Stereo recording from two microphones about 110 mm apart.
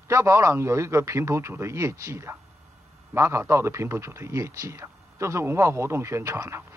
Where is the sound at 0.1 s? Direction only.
25° right (ahead or behind).